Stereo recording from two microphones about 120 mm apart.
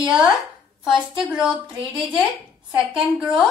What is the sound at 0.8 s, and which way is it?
A woman's voice, 5° right (ahead or behind).